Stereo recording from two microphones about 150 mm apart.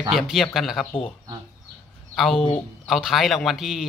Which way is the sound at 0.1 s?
Centre (ahead or behind).